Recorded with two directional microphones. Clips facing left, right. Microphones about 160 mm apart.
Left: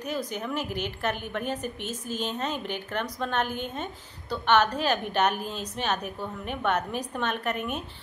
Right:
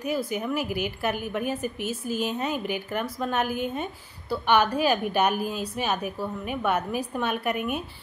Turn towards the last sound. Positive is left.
turn(degrees=-10)  # may be behind; listen again after turning